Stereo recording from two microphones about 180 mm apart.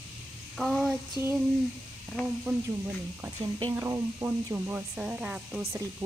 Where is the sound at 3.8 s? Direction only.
15° right (ahead or behind).